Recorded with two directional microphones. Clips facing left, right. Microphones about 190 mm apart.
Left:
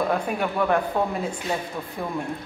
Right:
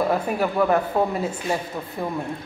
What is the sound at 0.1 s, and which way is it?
Speech, 5° right (ahead or behind).